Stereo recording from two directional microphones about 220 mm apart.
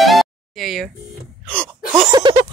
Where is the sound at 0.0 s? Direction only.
Centre (ahead or behind).